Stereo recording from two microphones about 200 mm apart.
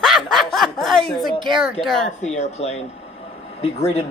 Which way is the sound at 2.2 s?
35° left (ahead or behind).